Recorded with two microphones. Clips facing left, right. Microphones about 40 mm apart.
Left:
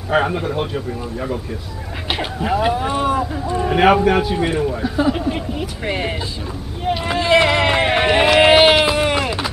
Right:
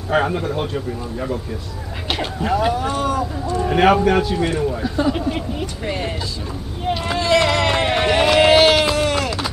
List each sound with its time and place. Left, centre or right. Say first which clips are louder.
0.1 s a man's voice: left 1 dB; centre
3.7 s a man's voice: left 1 dB; centre
5.9 s speech: left 3 dB; left
6.8 s run: left 2 dB; centre